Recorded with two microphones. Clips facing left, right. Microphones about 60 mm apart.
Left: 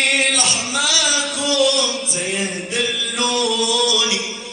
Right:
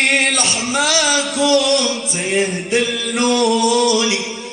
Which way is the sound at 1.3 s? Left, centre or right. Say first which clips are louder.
Right 4 dB; right.